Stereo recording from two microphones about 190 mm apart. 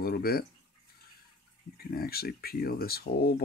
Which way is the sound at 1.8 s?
55° left (ahead or behind).